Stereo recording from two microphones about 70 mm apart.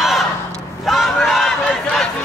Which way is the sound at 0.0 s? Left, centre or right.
Centre.